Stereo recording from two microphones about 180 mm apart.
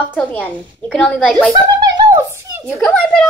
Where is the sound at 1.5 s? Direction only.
20° right (ahead or behind).